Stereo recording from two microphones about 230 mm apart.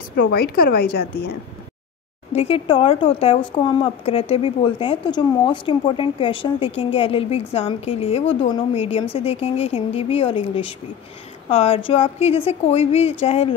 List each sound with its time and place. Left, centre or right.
0.2 s a woman's voice: left
2.3 s a woman's voice: left